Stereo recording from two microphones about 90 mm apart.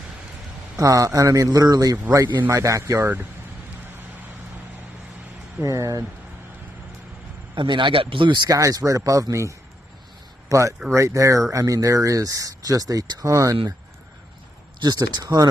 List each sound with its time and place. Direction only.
0.7 s speech: 40° right (ahead or behind)
5.6 s speech: 40° right (ahead or behind)
7.5 s speech: 60° right (ahead or behind)
8.5 s speech: 40° right (ahead or behind)
14.8 s speech: 50° right (ahead or behind)